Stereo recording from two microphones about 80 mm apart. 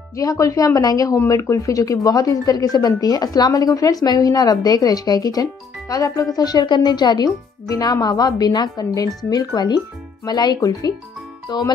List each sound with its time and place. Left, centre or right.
0.1 s speech: left
1.1 s speech: left
11.4 s music: left